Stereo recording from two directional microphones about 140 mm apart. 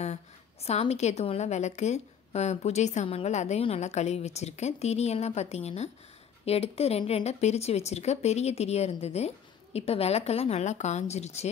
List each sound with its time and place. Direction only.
0.7 s a woman's voice: 50° left (ahead or behind)